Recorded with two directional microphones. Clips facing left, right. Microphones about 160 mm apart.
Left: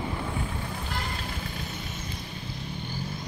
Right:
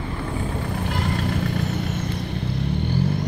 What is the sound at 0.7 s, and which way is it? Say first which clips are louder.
Vehicle: right 9 dB; 70° right (ahead or behind).